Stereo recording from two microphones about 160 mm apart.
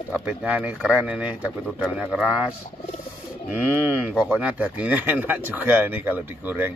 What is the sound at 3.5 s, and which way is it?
Speech, 10° right (ahead or behind).